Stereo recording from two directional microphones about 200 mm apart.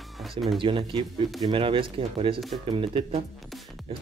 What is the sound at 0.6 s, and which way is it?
Speech, 25° right (ahead or behind).